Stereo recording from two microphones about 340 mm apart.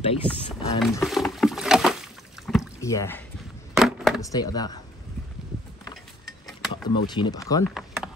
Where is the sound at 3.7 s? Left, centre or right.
Centre.